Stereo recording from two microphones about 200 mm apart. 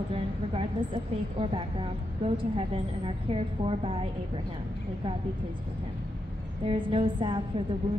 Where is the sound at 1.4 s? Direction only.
25° right (ahead or behind).